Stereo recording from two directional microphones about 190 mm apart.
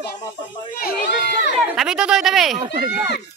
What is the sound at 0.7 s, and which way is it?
Speech, 50° left (ahead or behind).